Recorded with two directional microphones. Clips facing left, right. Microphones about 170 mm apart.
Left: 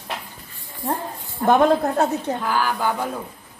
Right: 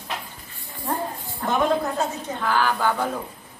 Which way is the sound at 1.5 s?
60° left (ahead or behind).